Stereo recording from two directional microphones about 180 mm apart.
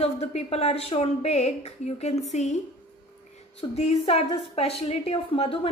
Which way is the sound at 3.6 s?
35° left (ahead or behind).